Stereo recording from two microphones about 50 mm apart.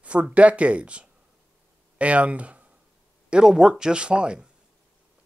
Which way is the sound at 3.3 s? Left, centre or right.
Centre.